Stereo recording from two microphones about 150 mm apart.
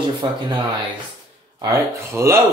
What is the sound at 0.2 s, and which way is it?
Speech, 30° right (ahead or behind).